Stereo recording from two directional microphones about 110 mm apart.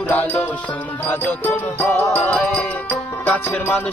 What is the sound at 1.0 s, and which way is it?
Music, 15° left (ahead or behind).